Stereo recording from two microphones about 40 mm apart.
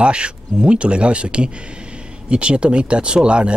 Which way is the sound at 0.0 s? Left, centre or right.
Right.